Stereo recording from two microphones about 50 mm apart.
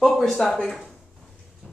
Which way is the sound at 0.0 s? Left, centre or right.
Centre.